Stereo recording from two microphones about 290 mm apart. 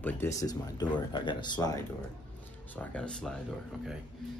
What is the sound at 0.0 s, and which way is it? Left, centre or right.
Speech, centre.